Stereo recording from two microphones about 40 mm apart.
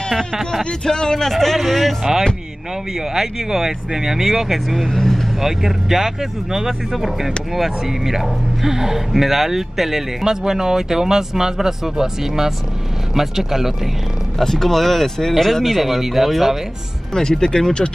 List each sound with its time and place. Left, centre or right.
0.7 s a man's voice: centre
3.2 s speech: centre
4.7 s speech: centre
5.4 s speech: centre
14.4 s a man's voice: centre
17.1 s a man's voice: centre